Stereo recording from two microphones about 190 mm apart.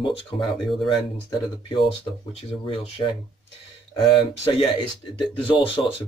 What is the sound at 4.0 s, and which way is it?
Speech, 30° left (ahead or behind).